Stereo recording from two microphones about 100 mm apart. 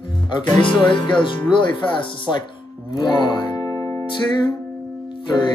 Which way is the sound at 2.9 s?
50° left (ahead or behind).